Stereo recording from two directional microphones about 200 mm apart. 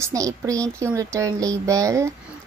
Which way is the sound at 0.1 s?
15° right (ahead or behind).